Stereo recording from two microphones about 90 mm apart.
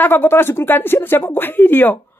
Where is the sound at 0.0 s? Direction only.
25° left (ahead or behind).